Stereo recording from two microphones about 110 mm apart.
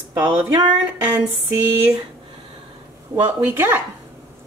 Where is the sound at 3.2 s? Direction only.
20° right (ahead or behind).